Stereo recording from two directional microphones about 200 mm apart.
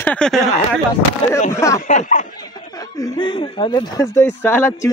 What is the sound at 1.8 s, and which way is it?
Speech, 40° left (ahead or behind).